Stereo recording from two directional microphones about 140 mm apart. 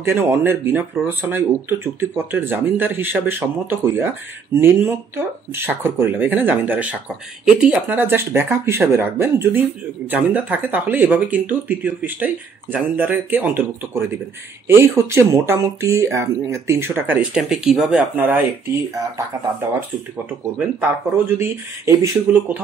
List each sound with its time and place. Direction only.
0.0 s speech: 20° right (ahead or behind)
20.5 s speech: 15° right (ahead or behind)